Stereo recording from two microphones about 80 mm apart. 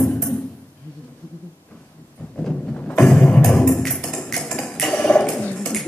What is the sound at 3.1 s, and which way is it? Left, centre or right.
Music, centre.